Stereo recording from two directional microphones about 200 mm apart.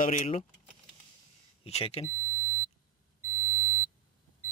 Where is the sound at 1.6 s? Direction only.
30° left (ahead or behind).